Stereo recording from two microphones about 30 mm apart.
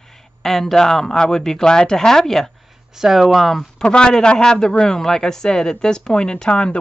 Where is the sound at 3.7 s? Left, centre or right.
Left.